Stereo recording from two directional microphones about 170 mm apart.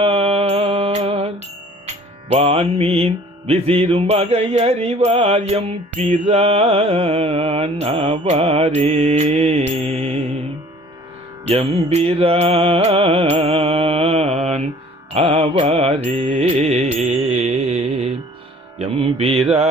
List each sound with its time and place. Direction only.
0.0 s mantra: 35° right (ahead or behind)
1.9 s music: 40° right (ahead or behind)
11.4 s music: 35° right (ahead or behind)
17.2 s mantra: 40° right (ahead or behind)
18.8 s music: 35° right (ahead or behind)